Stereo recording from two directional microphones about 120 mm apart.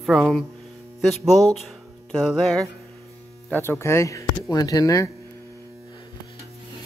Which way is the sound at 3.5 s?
20° left (ahead or behind).